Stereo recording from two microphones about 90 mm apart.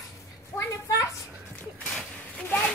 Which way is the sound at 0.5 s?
10° left (ahead or behind).